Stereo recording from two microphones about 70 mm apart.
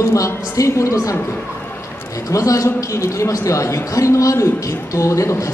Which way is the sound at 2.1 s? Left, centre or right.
Left.